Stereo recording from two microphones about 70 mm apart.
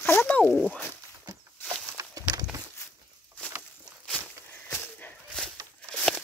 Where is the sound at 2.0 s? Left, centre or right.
Right.